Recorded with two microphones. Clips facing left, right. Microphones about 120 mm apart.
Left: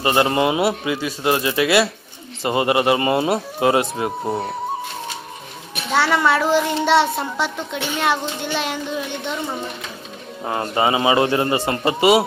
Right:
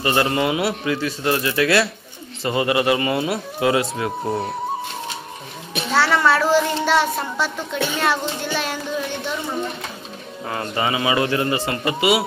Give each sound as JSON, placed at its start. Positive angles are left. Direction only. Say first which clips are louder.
{"t": 0.0, "sound": "a man's voice", "louder": "left 2 dB", "side_deg": 25}
{"t": 2.4, "sound": "a man's voice", "louder": "left 2 dB", "side_deg": 25}
{"t": 4.2, "sound": "speech", "louder": "even", "side_deg": 0}
{"t": 5.9, "sound": "a man's voice", "louder": "even", "side_deg": 15}
{"t": 10.4, "sound": "a man's voice", "louder": "left 4 dB", "side_deg": 25}